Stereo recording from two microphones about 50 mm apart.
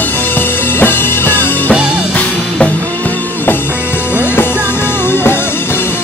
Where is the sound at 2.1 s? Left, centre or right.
Left.